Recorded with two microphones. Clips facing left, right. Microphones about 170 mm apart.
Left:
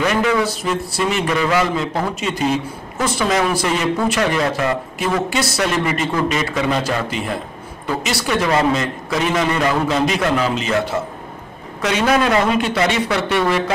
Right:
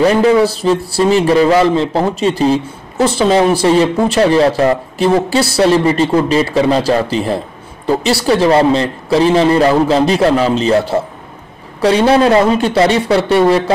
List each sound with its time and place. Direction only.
0.0 s speech: 30° right (ahead or behind)